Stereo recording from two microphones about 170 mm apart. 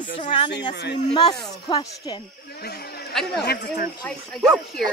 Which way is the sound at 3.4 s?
75° left (ahead or behind).